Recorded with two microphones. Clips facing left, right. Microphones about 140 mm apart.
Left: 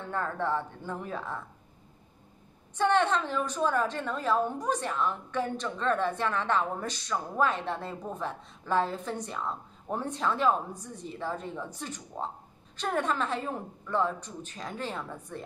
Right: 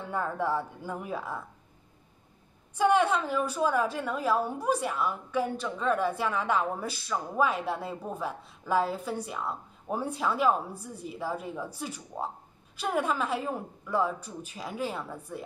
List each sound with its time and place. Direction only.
0.0 s a woman's voice: 10° right (ahead or behind)
2.7 s a woman's voice: 10° right (ahead or behind)